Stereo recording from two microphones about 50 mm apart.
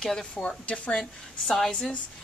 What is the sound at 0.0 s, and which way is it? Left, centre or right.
Speech, centre.